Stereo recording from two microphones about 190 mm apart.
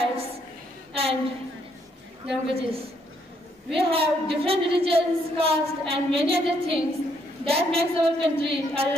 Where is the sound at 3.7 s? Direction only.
30° right (ahead or behind).